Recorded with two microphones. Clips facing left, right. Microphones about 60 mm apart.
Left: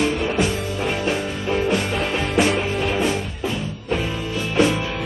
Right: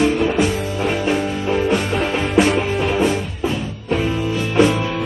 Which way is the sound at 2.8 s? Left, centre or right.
Centre.